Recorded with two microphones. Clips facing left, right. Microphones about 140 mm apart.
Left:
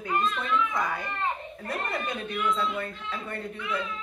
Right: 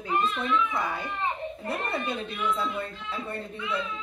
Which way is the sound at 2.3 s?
25° right (ahead or behind).